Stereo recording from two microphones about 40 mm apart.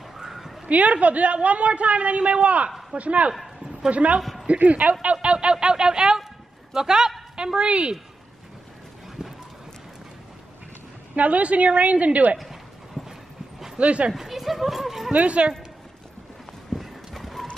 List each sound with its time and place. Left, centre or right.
0.2 s a sound: centre
0.7 s a woman's voice: right
4.2 s a sound: centre
4.5 s a woman's voice: right
11.1 s a woman's voice: right
12.4 s a sound: centre
13.7 s a woman's voice: right
14.1 s speech: centre
15.1 s speech: right
16.7 s clip-clop: centre